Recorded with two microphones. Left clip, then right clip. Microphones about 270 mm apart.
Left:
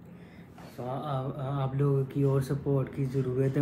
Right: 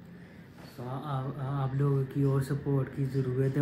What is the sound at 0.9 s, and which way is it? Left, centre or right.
Speech, centre.